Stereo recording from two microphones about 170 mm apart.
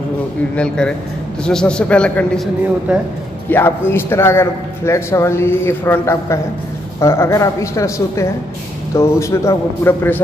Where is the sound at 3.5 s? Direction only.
15° left (ahead or behind).